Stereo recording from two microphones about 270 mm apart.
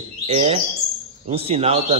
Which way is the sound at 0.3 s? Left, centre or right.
Right.